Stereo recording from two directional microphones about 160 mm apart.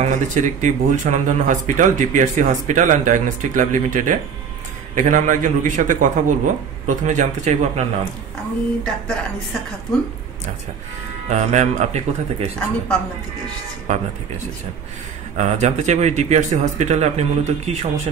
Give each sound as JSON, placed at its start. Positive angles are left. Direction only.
{"t": 0.0, "sound": "speech", "side_deg": -50}
{"t": 8.8, "sound": "speech", "side_deg": 5}
{"t": 11.2, "sound": "speech", "side_deg": -45}
{"t": 12.5, "sound": "speech", "side_deg": 5}
{"t": 13.9, "sound": "speech", "side_deg": -45}
{"t": 15.3, "sound": "speech", "side_deg": -45}